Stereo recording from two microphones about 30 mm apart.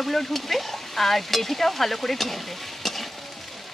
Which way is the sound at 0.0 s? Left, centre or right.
Centre.